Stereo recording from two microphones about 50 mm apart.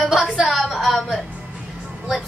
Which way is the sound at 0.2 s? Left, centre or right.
Centre.